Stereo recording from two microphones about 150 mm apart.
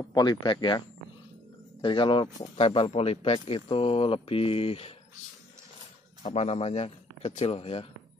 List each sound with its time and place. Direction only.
0.1 s speech: 30° left (ahead or behind)
6.3 s a man's voice: 45° left (ahead or behind)